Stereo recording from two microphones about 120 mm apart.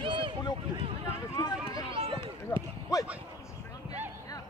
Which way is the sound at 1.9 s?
50° right (ahead or behind).